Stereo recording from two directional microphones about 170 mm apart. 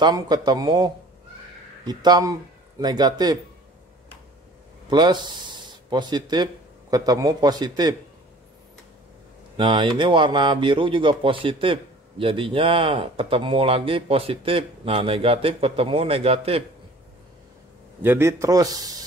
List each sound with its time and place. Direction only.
0.0 s a man's voice: 25° right (ahead or behind)
4.8 s speech: 25° right (ahead or behind)
9.6 s speech: 30° right (ahead or behind)
18.0 s a man's voice: 15° right (ahead or behind)